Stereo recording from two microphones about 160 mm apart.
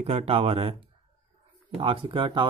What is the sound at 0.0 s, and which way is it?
Speech, 40° right (ahead or behind).